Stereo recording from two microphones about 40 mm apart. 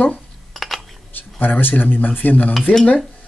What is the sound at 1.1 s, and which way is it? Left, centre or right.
Speech, left.